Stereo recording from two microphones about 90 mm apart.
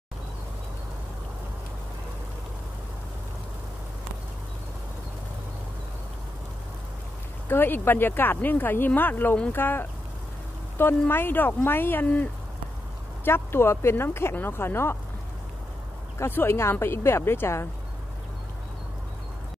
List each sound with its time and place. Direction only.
7.4 s speech: 25° left (ahead or behind)
16.2 s speech: 25° left (ahead or behind)